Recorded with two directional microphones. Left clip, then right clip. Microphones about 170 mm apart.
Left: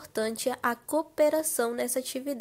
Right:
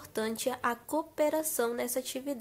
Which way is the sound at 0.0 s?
20° left (ahead or behind).